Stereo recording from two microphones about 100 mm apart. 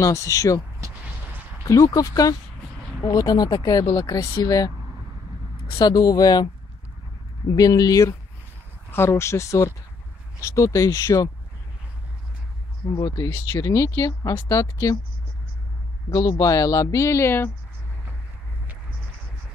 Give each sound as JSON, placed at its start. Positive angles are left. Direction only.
{"t": 0.0, "sound": "speech", "side_deg": 35}
{"t": 0.8, "sound": "a sound", "side_deg": -35}
{"t": 1.6, "sound": "speech", "side_deg": 35}
{"t": 5.8, "sound": "speech", "side_deg": 40}
{"t": 12.9, "sound": "speech", "side_deg": 40}
{"t": 16.1, "sound": "speech", "side_deg": 35}